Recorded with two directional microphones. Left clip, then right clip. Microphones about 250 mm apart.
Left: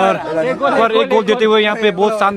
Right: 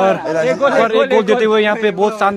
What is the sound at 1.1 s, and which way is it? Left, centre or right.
A man's voice, centre.